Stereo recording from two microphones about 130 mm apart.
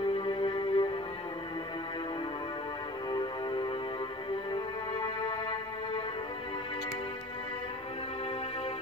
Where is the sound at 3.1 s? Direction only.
35° left (ahead or behind).